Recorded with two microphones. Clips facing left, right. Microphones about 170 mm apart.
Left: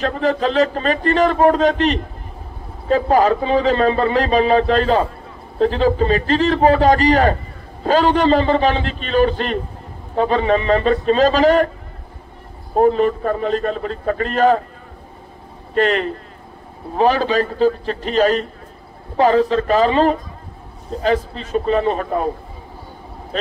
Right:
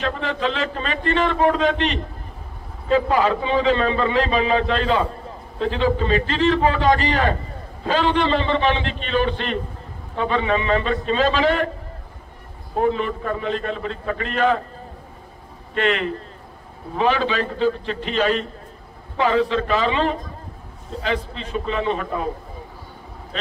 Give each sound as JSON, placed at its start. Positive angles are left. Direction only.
{"t": 0.0, "sound": "a man's voice", "side_deg": 40}
{"t": 12.7, "sound": "a man's voice", "side_deg": 40}
{"t": 15.7, "sound": "a man's voice", "side_deg": 40}